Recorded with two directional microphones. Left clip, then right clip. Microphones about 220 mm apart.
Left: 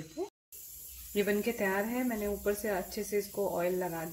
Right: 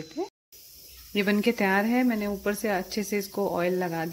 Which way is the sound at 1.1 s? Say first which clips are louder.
Right 6 dB; 30° right (ahead or behind).